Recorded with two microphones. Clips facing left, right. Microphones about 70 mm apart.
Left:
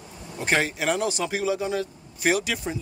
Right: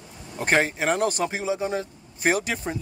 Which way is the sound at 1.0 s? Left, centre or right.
Right.